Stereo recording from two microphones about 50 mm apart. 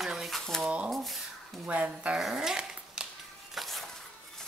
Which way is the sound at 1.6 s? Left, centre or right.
Right.